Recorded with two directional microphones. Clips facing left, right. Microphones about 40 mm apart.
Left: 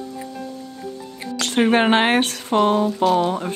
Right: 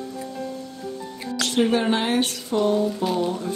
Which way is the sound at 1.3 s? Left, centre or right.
Left.